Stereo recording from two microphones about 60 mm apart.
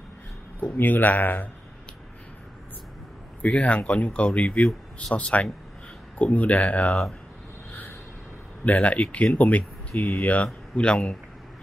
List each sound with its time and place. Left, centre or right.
0.7 s speech: left
3.4 s speech: left
8.6 s speech: left